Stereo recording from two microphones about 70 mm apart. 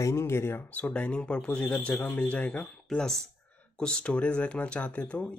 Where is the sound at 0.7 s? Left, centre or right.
Centre.